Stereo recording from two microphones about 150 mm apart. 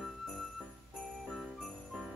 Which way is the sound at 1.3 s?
Centre (ahead or behind).